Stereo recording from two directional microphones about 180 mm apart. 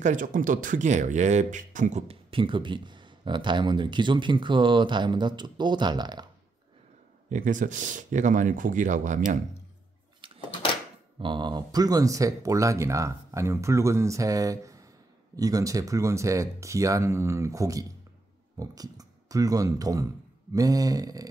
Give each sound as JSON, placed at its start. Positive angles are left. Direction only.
{"t": 0.0, "sound": "speech", "side_deg": -45}
{"t": 7.2, "sound": "speech", "side_deg": -45}
{"t": 10.5, "sound": "a sound", "side_deg": 25}
{"t": 11.1, "sound": "speech", "side_deg": -25}